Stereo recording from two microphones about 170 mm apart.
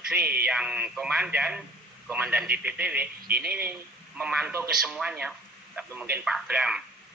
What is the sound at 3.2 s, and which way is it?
Speech, 65° right (ahead or behind).